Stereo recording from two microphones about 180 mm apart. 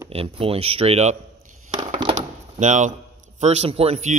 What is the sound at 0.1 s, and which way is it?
Speech, 30° right (ahead or behind).